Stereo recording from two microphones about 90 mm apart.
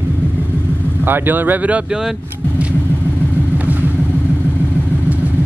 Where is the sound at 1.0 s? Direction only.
20° right (ahead or behind).